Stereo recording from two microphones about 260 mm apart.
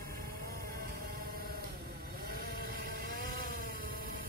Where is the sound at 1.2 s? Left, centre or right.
Right.